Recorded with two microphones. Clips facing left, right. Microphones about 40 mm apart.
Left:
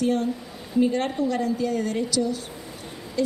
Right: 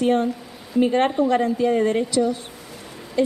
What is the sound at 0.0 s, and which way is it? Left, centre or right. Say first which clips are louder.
A woman's voice: right 4 dB; right.